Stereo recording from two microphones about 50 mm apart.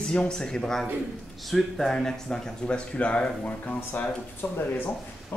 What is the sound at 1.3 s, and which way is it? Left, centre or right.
Speech, centre.